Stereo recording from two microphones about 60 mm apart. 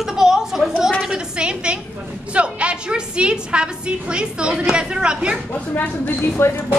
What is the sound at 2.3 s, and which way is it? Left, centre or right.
A woman's voice, centre.